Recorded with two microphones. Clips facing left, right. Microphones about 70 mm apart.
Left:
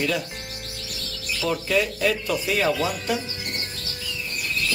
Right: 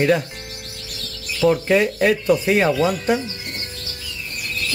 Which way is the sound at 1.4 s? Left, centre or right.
Right.